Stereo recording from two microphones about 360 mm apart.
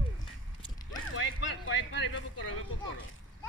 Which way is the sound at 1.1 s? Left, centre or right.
Left.